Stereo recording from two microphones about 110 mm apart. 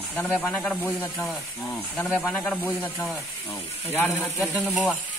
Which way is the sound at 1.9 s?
10° left (ahead or behind).